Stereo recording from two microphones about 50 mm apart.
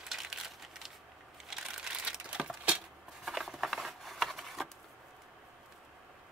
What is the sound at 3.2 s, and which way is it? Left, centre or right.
Patter, centre.